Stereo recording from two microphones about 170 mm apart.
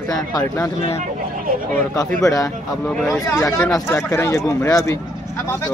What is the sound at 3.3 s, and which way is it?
Speech, 15° left (ahead or behind).